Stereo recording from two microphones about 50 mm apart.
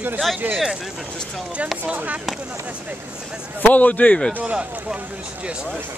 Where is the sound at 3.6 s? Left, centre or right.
Left.